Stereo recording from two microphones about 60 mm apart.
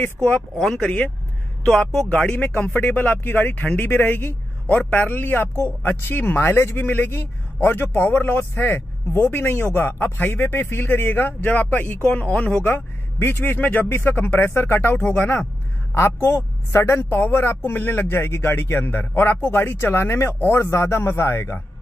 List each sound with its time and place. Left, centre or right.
0.0 s speech: left
0.6 s speech: centre
2.3 s speech: left
12.6 s speech: left
16.3 s a man's voice: left
17.1 s speech: left
20.2 s speech: left
20.5 s a man's voice: left